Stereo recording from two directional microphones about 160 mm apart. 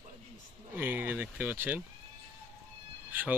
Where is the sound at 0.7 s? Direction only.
10° right (ahead or behind).